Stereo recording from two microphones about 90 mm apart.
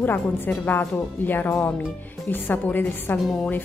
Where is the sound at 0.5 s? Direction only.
25° left (ahead or behind).